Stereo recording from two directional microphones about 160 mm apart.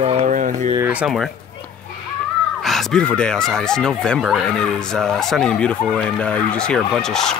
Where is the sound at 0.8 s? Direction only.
10° right (ahead or behind).